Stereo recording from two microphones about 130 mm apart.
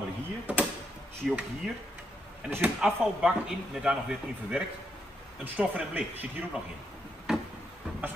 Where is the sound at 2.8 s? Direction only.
5° right (ahead or behind).